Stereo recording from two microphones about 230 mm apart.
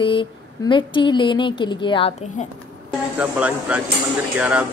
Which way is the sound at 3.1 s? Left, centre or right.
Centre.